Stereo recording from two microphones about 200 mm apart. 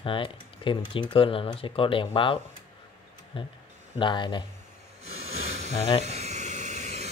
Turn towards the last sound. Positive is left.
turn(degrees=-35)  # may be behind; listen again after turning